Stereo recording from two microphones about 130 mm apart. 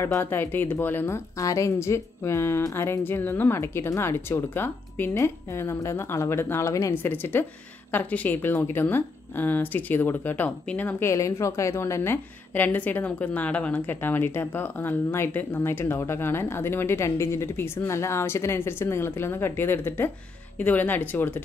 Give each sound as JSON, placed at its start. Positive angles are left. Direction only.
{"t": 0.0, "sound": "a woman's voice", "side_deg": 20}